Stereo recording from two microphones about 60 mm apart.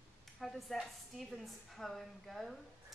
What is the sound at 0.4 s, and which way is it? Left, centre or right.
A woman's voice, centre.